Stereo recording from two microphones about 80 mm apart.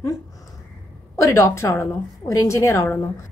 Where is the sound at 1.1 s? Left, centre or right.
Left.